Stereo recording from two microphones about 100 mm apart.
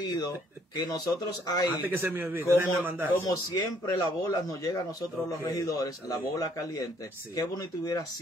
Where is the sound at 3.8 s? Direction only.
40° left (ahead or behind).